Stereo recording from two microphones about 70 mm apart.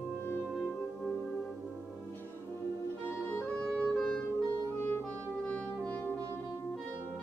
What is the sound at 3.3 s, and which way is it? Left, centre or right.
Music, left.